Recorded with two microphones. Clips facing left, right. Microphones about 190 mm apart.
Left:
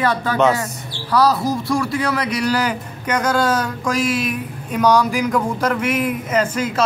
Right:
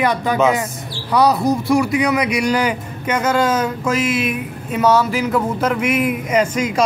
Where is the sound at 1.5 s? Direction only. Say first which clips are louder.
Right 4 dB; 20° right (ahead or behind).